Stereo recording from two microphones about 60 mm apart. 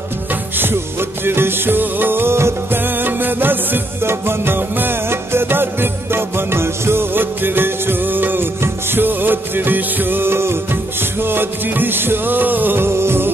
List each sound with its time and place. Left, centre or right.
0.3 s music: right